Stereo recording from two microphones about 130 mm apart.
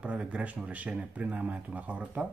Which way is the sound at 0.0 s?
10° right (ahead or behind).